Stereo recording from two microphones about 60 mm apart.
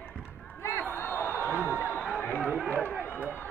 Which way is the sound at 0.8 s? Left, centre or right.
Left.